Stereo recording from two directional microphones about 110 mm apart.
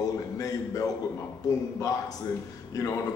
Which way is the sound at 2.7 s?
35° left (ahead or behind).